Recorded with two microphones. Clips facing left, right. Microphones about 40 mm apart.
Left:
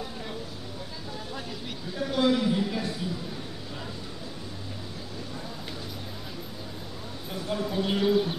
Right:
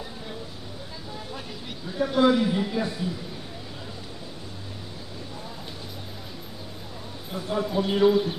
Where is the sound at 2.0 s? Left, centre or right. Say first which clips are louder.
Right 4 dB; centre.